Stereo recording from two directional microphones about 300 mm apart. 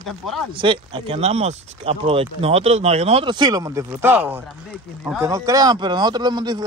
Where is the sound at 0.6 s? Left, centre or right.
Centre.